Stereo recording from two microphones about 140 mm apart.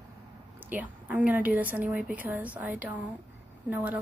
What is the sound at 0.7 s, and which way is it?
A woman's voice, 10° right (ahead or behind).